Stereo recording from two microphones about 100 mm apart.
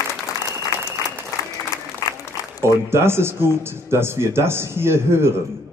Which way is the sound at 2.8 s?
25° right (ahead or behind).